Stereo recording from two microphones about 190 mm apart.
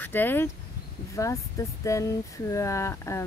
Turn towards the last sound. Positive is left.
turn(degrees=15)  # may be behind; listen again after turning